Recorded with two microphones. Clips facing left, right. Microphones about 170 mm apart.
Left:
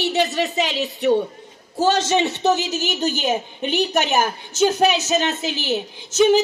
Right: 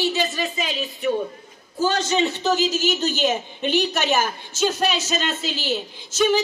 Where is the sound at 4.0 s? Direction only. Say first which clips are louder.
Left 2 dB; 55° left (ahead or behind).